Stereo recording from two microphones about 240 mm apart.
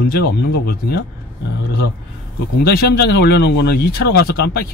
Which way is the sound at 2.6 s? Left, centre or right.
Left.